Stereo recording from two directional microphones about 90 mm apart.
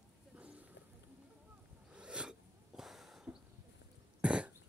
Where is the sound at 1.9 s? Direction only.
10° right (ahead or behind).